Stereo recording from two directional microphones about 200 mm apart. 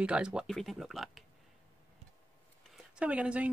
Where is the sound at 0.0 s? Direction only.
5° right (ahead or behind).